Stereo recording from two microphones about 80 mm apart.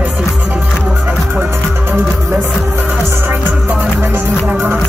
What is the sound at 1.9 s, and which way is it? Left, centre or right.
Music, right.